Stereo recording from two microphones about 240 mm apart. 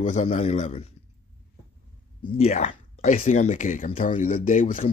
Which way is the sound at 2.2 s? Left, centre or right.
Left.